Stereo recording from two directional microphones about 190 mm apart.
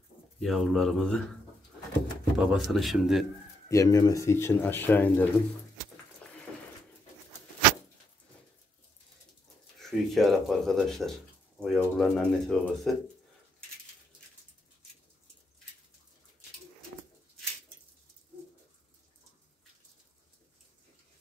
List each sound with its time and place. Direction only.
0.4 s speech: centre (ahead or behind)
2.3 s speech: centre (ahead or behind)
3.6 s speech: 15° left (ahead or behind)
6.5 s a sound: 5° left (ahead or behind)
9.8 s speech: centre (ahead or behind)